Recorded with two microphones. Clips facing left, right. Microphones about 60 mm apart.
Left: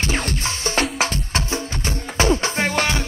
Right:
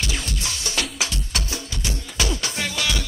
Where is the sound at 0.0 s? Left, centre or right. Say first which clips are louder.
Left 5 dB; left.